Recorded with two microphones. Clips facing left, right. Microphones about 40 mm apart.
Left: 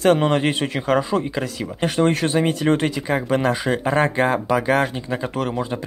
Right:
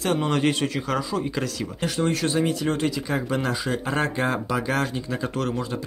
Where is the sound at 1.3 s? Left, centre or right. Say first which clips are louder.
Left 2 dB; centre.